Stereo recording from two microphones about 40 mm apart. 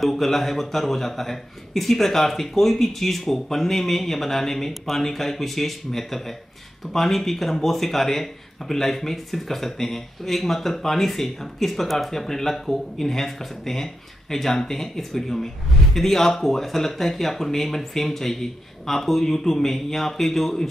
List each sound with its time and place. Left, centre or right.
0.0 s a man's voice: centre